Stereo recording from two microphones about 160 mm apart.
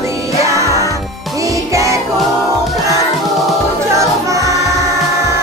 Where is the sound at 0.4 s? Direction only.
20° right (ahead or behind).